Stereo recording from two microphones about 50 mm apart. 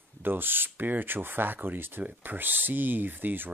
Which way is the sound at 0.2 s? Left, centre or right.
Right.